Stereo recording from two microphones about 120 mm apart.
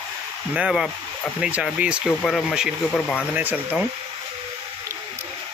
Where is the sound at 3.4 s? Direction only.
15° right (ahead or behind).